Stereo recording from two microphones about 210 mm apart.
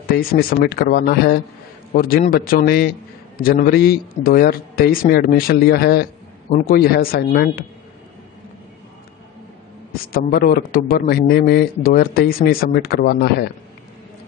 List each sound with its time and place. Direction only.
0.3 s a man's voice: 45° left (ahead or behind)
10.1 s a man's voice: 45° left (ahead or behind)